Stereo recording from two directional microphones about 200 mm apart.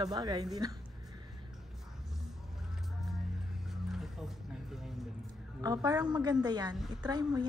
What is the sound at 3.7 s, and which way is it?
Music, centre (ahead or behind).